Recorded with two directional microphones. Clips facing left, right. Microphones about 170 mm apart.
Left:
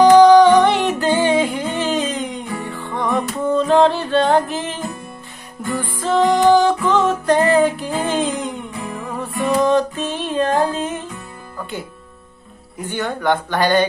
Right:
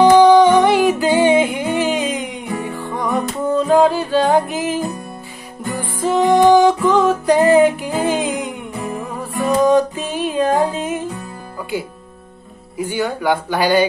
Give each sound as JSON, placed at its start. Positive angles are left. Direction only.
{"t": 0.2, "sound": "music", "side_deg": -15}
{"t": 5.8, "sound": "music", "side_deg": -15}
{"t": 7.0, "sound": "music", "side_deg": -5}
{"t": 7.3, "sound": "music", "side_deg": -15}
{"t": 9.6, "sound": "music", "side_deg": -10}
{"t": 12.7, "sound": "speech", "side_deg": -10}